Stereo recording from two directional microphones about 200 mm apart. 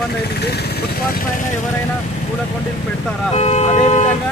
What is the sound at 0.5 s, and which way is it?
Speech, 50° left (ahead or behind).